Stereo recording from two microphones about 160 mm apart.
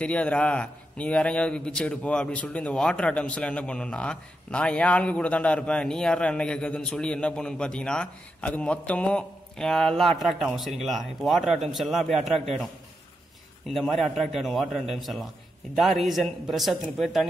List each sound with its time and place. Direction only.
0.0 s a man's voice: 5° left (ahead or behind)
13.7 s a man's voice: centre (ahead or behind)